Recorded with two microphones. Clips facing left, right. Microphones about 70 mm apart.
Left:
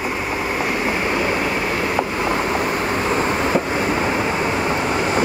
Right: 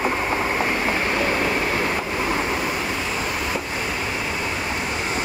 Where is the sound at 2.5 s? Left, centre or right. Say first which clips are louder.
Left 4 dB; left.